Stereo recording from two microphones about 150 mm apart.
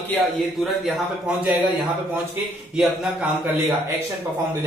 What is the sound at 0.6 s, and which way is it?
Speech, centre (ahead or behind).